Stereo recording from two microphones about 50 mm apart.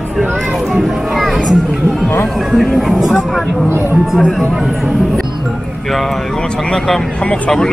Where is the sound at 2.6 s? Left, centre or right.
Centre.